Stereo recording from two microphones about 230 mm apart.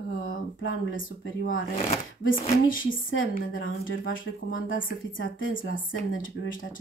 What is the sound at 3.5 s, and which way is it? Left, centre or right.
A woman's voice, left.